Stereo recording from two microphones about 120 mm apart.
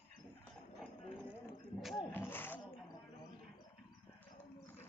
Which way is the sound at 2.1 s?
15° left (ahead or behind).